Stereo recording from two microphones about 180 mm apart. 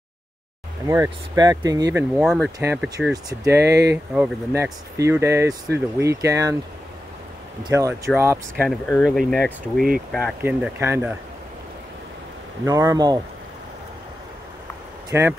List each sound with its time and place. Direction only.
0.8 s speech: 15° right (ahead or behind)
3.1 s speech: 20° right (ahead or behind)
3.6 s speech: 70° right (ahead or behind)
4.1 s speech: 10° right (ahead or behind)
7.6 s speech: 15° right (ahead or behind)
8.6 s speech: 10° left (ahead or behind)
10.4 s speech: 10° right (ahead or behind)
12.6 s speech: 15° right (ahead or behind)
15.0 s speech: 15° right (ahead or behind)